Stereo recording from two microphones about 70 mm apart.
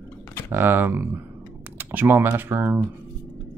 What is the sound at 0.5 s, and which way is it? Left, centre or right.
Speech, right.